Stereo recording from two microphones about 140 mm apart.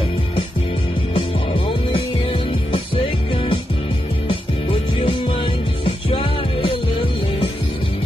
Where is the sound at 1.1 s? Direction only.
40° left (ahead or behind).